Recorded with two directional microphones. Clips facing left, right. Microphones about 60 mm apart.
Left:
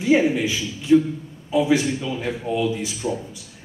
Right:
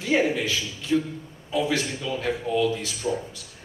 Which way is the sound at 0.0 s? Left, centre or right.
Centre.